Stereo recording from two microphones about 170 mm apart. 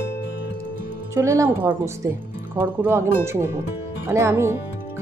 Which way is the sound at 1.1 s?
15° right (ahead or behind).